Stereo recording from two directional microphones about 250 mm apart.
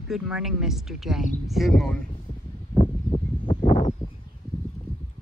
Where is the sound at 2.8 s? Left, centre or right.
Left.